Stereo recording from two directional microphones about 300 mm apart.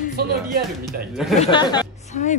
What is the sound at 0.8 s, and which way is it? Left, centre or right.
Speech, centre.